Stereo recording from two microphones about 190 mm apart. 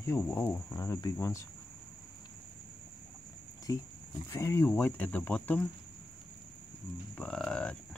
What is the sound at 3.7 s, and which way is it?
Speech, 15° left (ahead or behind).